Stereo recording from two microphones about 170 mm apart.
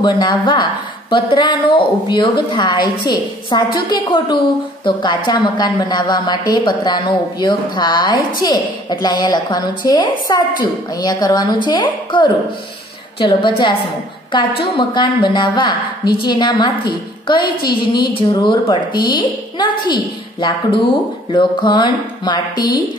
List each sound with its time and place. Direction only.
0.0 s a woman's voice: 25° left (ahead or behind)